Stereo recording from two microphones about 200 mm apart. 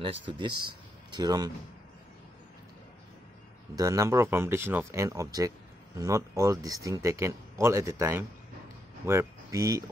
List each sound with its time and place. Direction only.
0.3 s speech: 25° right (ahead or behind)
3.7 s speech: 15° right (ahead or behind)